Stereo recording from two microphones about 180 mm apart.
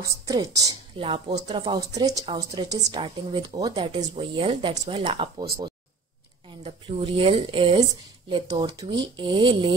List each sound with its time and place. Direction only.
0.0 s a woman's voice: 20° right (ahead or behind)
6.6 s a woman's voice: 30° right (ahead or behind)